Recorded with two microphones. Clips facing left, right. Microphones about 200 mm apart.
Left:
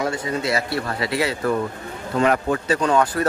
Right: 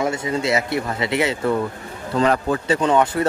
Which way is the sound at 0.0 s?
25° right (ahead or behind).